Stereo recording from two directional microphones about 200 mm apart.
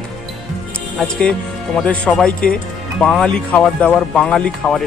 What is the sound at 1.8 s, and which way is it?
Speech, 5° left (ahead or behind).